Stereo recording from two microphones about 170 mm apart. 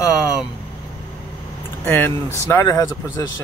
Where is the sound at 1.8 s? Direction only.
10° left (ahead or behind).